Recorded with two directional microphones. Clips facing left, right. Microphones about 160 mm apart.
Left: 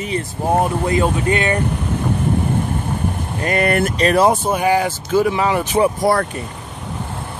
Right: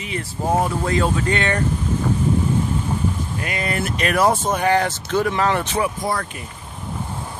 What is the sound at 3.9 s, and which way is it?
Speech, 30° left (ahead or behind).